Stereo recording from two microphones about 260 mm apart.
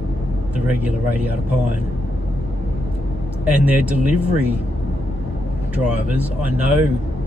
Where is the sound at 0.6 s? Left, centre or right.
Centre.